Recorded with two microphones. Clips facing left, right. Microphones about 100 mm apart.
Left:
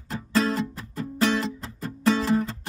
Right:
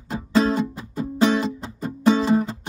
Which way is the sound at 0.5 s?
10° right (ahead or behind).